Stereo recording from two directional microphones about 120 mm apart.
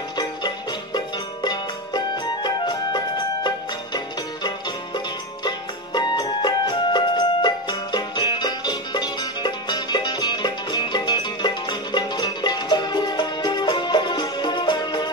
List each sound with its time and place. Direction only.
0.9 s music: 35° left (ahead or behind)
5.9 s music: 35° left (ahead or behind)